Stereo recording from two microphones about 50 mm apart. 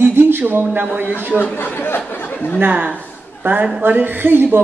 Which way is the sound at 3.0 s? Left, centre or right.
Right.